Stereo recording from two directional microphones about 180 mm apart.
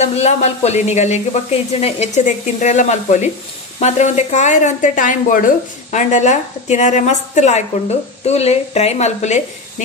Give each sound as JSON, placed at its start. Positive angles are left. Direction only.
{"t": 0.0, "sound": "speech", "side_deg": 35}